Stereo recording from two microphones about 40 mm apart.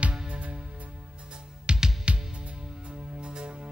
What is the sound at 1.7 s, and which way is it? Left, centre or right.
Music, right.